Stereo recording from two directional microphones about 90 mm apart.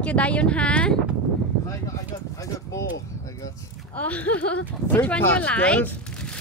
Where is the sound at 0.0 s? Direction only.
15° left (ahead or behind).